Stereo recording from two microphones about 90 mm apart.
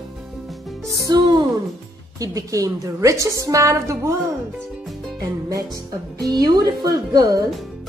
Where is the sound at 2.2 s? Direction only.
40° right (ahead or behind).